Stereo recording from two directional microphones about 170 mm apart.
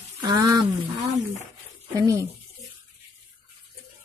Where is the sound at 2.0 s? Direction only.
20° right (ahead or behind).